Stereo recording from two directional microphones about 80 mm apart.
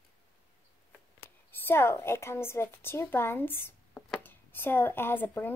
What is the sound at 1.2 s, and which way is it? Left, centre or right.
Speech, left.